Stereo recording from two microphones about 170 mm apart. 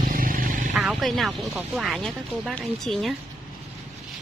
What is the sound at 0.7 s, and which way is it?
Speech, centre (ahead or behind).